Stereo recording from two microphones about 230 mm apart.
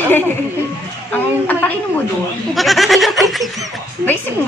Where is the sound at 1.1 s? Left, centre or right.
Centre.